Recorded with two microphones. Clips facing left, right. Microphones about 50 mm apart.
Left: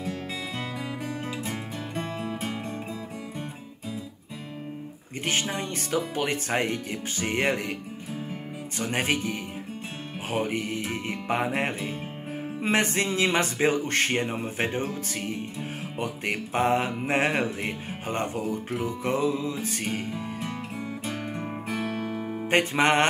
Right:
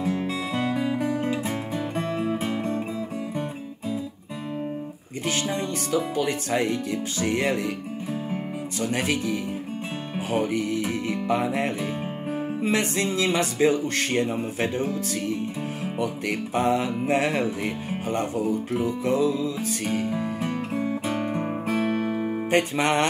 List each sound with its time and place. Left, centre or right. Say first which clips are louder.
0.0 s music: right 6 dB; right
5.2 s speech: right 2 dB; left
8.7 s speech: right 1 dB; left
12.9 s speech: right 1 dB; left
20.1 s music: right 6 dB; right
20.8 s music: right 6 dB; right
22.5 s speech: left 1 dB; left